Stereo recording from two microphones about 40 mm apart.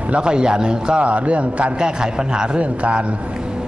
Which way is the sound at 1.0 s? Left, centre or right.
Right.